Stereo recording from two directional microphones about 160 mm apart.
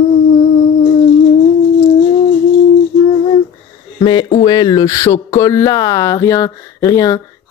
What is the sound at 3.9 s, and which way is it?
Speech, 30° left (ahead or behind).